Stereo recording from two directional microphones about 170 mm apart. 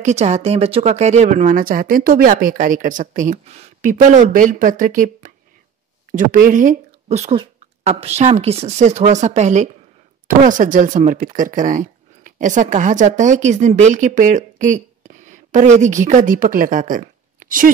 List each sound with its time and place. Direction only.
0.0 s speech: 40° right (ahead or behind)